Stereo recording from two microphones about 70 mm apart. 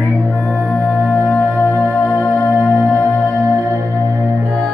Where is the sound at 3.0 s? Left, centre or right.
Left.